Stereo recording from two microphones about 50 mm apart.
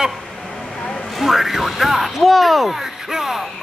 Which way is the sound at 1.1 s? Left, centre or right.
Centre.